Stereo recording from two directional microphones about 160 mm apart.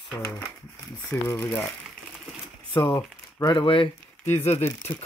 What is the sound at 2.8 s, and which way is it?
Speech, 20° left (ahead or behind).